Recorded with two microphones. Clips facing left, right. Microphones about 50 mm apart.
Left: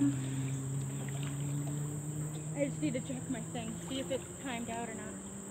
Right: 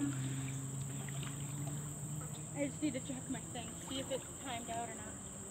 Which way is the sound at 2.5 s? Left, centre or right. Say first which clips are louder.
Left 4 dB; centre.